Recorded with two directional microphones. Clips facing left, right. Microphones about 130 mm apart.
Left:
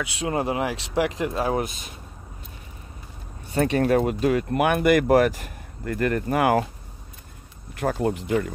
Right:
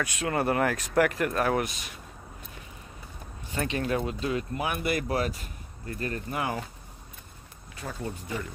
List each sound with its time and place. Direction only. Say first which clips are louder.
0.2 s speech: left 1 dB; 15° left (ahead or behind)
3.5 s speech: left 9 dB; 50° left (ahead or behind)
7.8 s speech: left 12 dB; 70° left (ahead or behind)